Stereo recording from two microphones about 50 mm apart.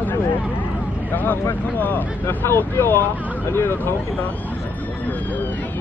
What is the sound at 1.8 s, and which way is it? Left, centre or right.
Speech, left.